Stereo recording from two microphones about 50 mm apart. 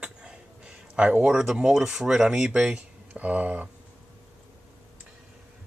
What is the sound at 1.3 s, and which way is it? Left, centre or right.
Speech, centre.